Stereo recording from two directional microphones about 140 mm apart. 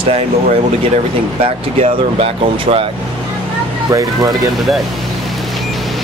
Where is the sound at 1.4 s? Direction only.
45° right (ahead or behind).